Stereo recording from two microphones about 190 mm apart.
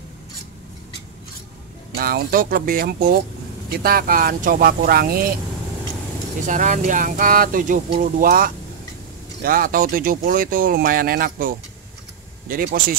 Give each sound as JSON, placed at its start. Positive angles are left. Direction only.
{"t": 2.0, "sound": "speech", "side_deg": -50}
{"t": 6.4, "sound": "speech", "side_deg": -40}